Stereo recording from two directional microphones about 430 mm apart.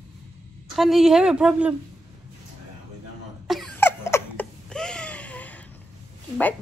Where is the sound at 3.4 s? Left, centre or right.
Centre.